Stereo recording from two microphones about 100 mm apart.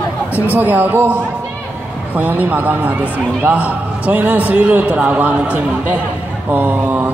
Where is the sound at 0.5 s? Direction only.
15° right (ahead or behind).